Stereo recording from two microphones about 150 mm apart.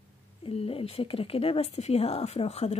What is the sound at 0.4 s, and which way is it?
A woman's voice, 40° left (ahead or behind).